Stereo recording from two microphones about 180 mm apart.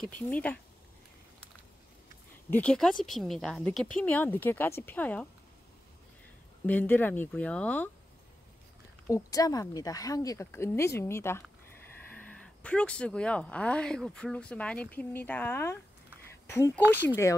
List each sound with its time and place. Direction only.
0.0 s speech: 10° left (ahead or behind)
2.5 s speech: 5° left (ahead or behind)
6.6 s speech: 10° left (ahead or behind)
9.0 s speech: 20° left (ahead or behind)